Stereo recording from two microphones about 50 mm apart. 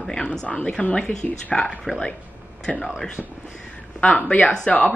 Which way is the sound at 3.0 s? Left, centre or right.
Centre.